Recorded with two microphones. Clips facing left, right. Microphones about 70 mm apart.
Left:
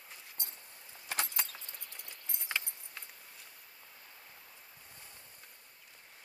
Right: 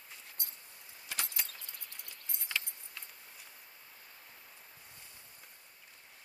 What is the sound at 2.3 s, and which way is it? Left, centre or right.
Keys jangling, left.